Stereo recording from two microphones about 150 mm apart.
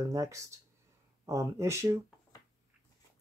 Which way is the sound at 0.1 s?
20° right (ahead or behind).